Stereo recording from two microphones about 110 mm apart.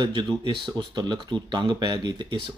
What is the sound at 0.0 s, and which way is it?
Speech, 45° right (ahead or behind).